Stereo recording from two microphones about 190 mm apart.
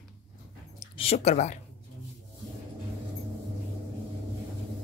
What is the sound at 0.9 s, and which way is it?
Speech, 35° left (ahead or behind).